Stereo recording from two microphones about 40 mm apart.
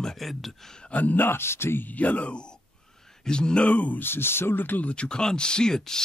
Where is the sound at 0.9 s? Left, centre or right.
Left.